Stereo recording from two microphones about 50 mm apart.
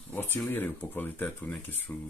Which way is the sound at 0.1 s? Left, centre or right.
Left.